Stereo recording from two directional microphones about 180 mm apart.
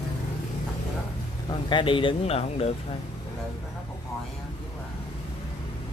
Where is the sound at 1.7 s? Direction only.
25° left (ahead or behind).